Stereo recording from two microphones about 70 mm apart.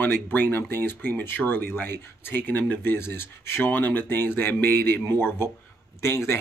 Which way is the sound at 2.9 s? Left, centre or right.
Left.